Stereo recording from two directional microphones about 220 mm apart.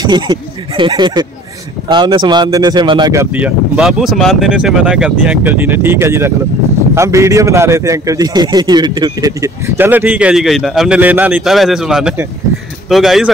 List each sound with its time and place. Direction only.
0.0 s speech: 20° right (ahead or behind); by 13.3 s centre (ahead or behind)